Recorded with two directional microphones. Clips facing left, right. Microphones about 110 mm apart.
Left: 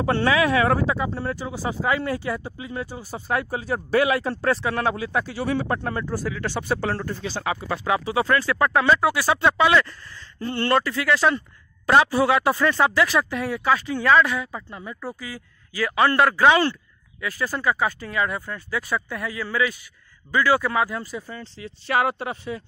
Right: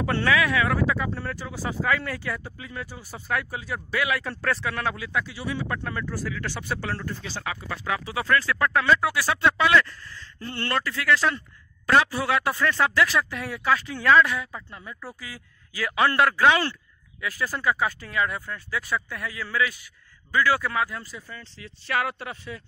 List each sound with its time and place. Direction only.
0.0 s speech: 25° left (ahead or behind)
7.2 s speech: 25° left (ahead or behind); by 14.6 s 5° left (ahead or behind)
14.7 s speech: 15° left (ahead or behind)
15.1 s speech: centre (ahead or behind); by 22.6 s 20° left (ahead or behind)